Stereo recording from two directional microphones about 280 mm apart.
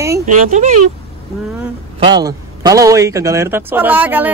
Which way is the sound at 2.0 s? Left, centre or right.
Centre.